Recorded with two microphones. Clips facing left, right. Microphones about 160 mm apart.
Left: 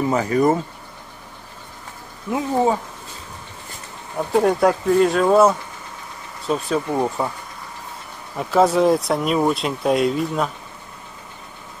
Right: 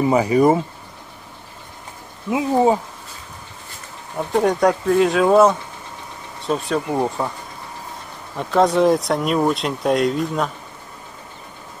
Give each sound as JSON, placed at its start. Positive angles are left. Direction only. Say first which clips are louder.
{"t": 0.0, "sound": "speech", "louder": "right 3 dB", "side_deg": -10}
{"t": 2.5, "sound": "speech", "louder": "right 3 dB", "side_deg": -20}
{"t": 4.2, "sound": "speech", "louder": "even", "side_deg": 5}
{"t": 8.4, "sound": "speech", "louder": "even", "side_deg": 5}